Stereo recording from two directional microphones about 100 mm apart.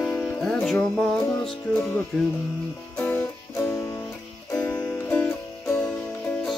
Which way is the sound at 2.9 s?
15° left (ahead or behind).